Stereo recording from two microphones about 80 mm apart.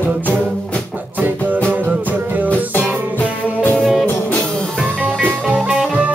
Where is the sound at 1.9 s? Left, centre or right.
Right.